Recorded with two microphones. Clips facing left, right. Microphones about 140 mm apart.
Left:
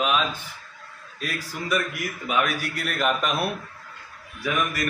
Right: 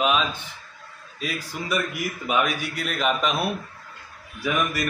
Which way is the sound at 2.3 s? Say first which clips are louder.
Right 1 dB; centre (ahead or behind).